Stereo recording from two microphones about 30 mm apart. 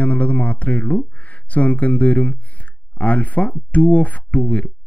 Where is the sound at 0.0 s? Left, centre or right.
Left.